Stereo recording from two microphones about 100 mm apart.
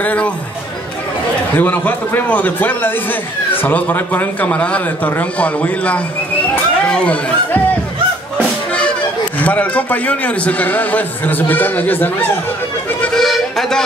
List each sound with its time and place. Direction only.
0.0 s a man's voice: 15° left (ahead or behind)
1.6 s a man's voice: 15° left (ahead or behind)
9.4 s a man's voice: 15° left (ahead or behind)
13.0 s music: 5° left (ahead or behind)